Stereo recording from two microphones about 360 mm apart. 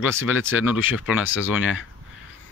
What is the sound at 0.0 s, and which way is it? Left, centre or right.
Speech, centre.